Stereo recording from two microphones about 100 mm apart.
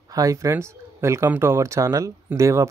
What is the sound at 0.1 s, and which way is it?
Speech, 35° right (ahead or behind).